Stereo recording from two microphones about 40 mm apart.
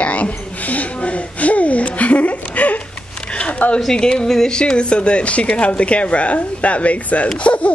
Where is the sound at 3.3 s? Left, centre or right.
Left.